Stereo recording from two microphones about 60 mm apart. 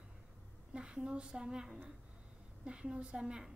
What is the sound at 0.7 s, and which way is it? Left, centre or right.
A woman's voice, centre.